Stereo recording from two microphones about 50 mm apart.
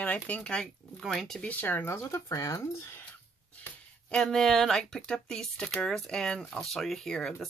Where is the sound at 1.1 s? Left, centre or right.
Centre.